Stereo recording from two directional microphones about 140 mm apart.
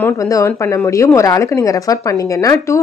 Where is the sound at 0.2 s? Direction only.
25° left (ahead or behind).